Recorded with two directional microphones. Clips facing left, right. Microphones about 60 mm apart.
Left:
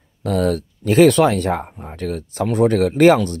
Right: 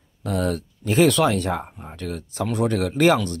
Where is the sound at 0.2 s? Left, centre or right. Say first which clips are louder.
Left 5 dB; left.